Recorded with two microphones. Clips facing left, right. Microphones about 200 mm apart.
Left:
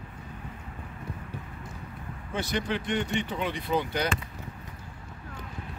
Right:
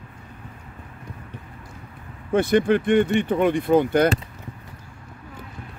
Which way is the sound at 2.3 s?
55° right (ahead or behind).